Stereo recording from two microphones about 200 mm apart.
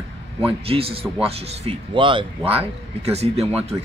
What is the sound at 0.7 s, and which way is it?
Speech, 30° right (ahead or behind).